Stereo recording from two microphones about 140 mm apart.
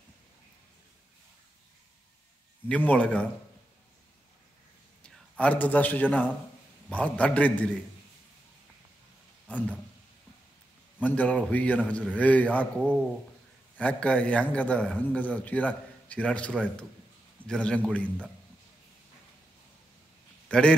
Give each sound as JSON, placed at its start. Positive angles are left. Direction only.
{"t": 2.7, "sound": "a man's voice", "side_deg": 10}
{"t": 5.0, "sound": "a man's voice", "side_deg": 10}
{"t": 9.5, "sound": "a man's voice", "side_deg": 10}
{"t": 11.0, "sound": "a man's voice", "side_deg": 10}
{"t": 20.4, "sound": "a man's voice", "side_deg": 5}